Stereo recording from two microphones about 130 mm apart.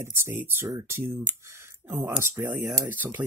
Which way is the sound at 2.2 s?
15° right (ahead or behind).